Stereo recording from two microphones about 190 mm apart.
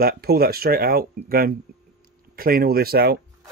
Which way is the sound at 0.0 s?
55° right (ahead or behind).